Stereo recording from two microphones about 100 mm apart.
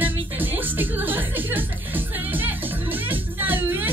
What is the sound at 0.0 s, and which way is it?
Music, 20° right (ahead or behind).